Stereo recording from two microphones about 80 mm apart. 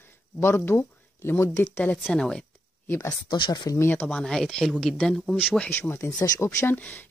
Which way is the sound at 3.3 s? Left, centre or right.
Left.